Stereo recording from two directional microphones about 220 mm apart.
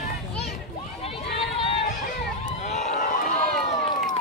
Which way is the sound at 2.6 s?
35° left (ahead or behind).